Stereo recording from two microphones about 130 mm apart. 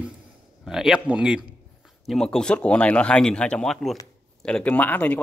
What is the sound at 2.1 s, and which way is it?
Speech, 5° left (ahead or behind).